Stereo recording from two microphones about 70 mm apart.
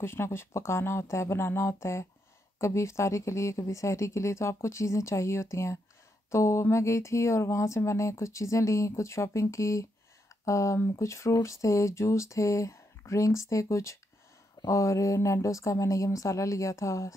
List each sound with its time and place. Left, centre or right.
0.0 s speech: left